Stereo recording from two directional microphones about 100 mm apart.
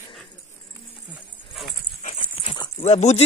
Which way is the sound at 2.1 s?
90° left.